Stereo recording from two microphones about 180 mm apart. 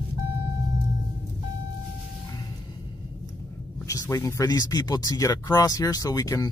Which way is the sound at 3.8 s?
20° left (ahead or behind).